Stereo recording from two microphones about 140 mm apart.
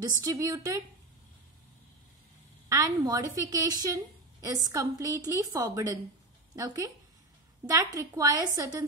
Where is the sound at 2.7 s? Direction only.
25° right (ahead or behind).